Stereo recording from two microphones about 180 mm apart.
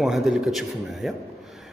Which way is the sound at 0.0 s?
Centre (ahead or behind).